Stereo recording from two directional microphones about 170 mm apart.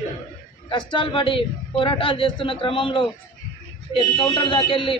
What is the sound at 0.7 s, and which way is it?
A man's voice, 30° left (ahead or behind).